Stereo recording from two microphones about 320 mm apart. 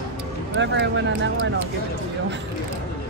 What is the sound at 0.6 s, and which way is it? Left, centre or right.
Speech, right.